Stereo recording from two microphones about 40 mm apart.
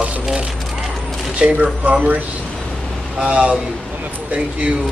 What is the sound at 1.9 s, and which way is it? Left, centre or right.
Speech, right.